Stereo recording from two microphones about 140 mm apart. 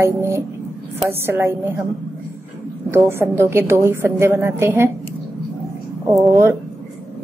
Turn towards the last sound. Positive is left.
turn(degrees=-20)  # may be behind; listen again after turning